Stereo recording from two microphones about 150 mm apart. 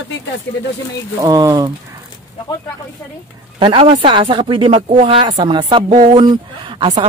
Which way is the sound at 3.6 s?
35° right (ahead or behind).